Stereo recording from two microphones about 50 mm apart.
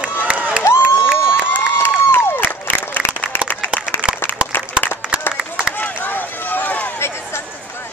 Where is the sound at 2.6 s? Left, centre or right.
Left.